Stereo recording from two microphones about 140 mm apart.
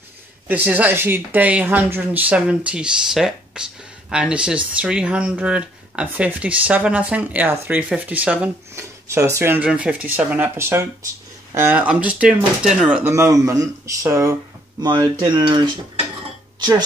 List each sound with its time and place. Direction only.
0.5 s speech: 10° right (ahead or behind)
9.0 s a sound: 20° right (ahead or behind)
9.4 s speech: 15° right (ahead or behind)
13.1 s speech: 20° right (ahead or behind)